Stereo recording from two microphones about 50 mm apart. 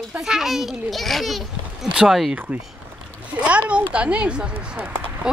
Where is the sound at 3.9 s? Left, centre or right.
Right.